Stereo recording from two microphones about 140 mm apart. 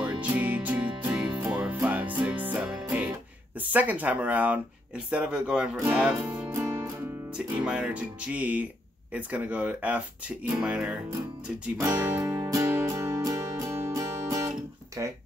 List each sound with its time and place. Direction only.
0.2 s music: 10° right (ahead or behind)
3.5 s speech: 10° right (ahead or behind)
6.5 s music: 20° right (ahead or behind)
7.2 s speech: 5° right (ahead or behind)
12.3 s music: 25° right (ahead or behind)
15.0 s speech: 20° right (ahead or behind)